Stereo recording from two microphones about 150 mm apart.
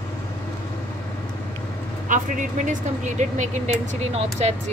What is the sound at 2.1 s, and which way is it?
Speech, 55° right (ahead or behind).